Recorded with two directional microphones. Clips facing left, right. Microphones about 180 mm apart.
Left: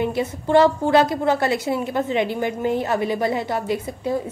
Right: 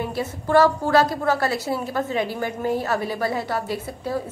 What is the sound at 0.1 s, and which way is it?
A woman's voice, 20° left (ahead or behind).